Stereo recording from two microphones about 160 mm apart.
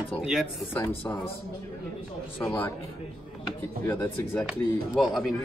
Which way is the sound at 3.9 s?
15° left (ahead or behind).